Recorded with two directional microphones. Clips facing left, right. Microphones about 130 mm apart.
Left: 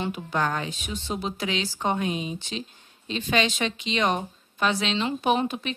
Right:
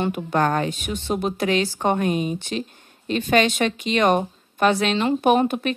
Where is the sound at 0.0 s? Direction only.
55° right (ahead or behind).